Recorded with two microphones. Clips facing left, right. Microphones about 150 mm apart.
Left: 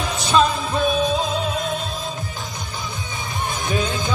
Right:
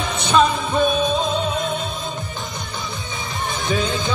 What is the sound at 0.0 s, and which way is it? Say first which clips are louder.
Music: right 1 dB; centre (ahead or behind).